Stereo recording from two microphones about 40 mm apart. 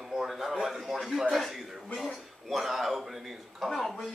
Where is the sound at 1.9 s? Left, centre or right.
Centre.